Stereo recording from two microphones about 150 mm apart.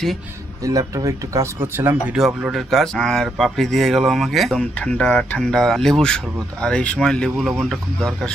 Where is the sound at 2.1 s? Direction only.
Centre (ahead or behind).